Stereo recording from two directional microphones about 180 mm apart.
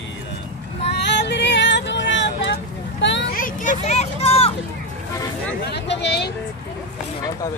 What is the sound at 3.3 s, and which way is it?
Vehicle, 45° left (ahead or behind).